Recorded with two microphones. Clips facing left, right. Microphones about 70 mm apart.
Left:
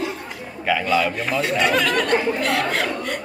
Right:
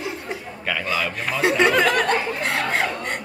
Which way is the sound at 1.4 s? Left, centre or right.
Right.